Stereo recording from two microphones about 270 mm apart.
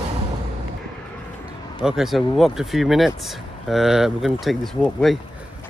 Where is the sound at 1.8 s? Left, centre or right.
Centre.